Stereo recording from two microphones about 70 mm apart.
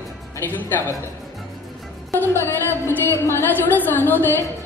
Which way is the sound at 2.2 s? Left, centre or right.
Left.